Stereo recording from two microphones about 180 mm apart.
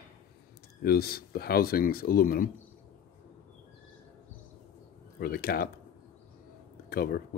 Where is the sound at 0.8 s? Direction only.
60° left (ahead or behind).